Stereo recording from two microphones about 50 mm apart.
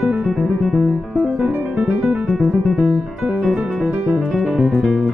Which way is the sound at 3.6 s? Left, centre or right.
Right.